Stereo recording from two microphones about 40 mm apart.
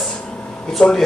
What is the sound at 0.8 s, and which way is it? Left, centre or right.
Speech, left.